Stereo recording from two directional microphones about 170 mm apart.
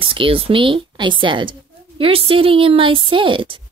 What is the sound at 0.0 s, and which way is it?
A woman's voice, 30° right (ahead or behind).